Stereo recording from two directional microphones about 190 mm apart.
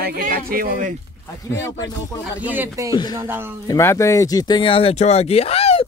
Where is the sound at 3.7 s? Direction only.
15° left (ahead or behind).